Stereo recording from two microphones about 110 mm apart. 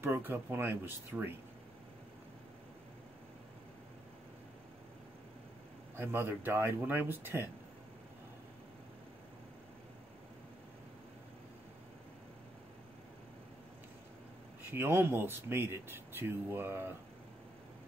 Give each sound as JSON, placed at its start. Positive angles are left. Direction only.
{"t": 0.0, "sound": "speech", "side_deg": -20}
{"t": 5.9, "sound": "speech", "side_deg": -20}
{"t": 14.7, "sound": "speech", "side_deg": -20}